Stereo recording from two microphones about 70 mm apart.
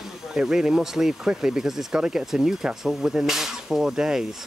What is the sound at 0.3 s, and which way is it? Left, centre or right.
Speech, centre.